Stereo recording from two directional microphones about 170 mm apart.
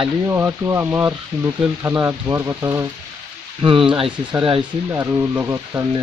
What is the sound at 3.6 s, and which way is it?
Speech, 30° right (ahead or behind).